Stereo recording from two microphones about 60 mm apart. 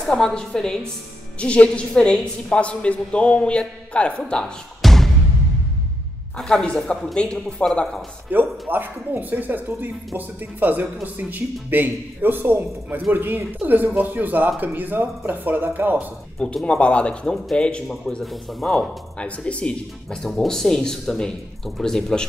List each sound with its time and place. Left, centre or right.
0.0 s speech: centre
1.4 s a woman's voice: centre
4.2 s music: centre
6.3 s speech: centre
8.3 s speech: right
16.6 s speech: centre
18.2 s speech: centre
19.1 s a woman's voice: centre
20.2 s speech: centre